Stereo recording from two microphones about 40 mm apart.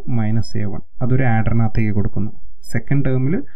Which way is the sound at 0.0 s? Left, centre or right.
Right.